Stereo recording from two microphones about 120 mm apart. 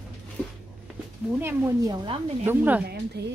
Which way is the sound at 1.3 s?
20° right (ahead or behind).